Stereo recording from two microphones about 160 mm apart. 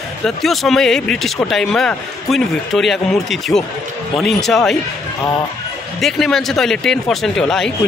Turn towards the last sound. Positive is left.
turn(degrees=5)  # may be behind; listen again after turning